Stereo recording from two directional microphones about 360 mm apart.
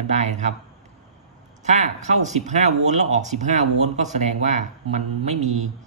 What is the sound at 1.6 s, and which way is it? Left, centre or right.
Speech, centre.